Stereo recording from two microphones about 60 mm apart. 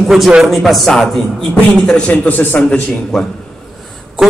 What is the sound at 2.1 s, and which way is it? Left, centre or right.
Speech, left.